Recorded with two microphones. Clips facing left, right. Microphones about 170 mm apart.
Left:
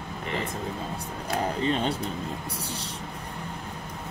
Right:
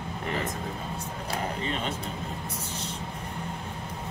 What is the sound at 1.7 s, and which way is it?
Speech, 35° left (ahead or behind).